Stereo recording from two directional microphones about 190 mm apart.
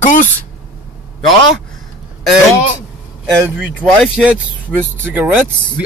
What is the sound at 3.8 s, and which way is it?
Speech, 5° right (ahead or behind).